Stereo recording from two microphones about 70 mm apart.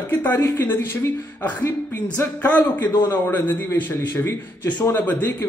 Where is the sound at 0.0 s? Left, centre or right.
Left.